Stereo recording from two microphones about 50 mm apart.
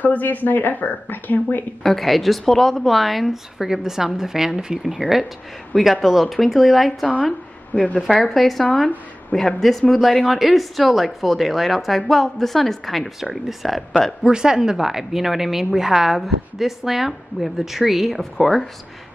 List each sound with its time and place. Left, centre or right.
0.0 s speech: left
1.8 s a woman's voice: centre
3.5 s a woman's voice: centre
7.7 s a woman's voice: left
8.2 s a woman's voice: centre
14.2 s a woman's voice: centre